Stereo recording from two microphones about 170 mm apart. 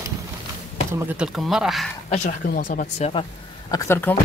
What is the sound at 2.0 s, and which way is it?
Speech, 45° left (ahead or behind).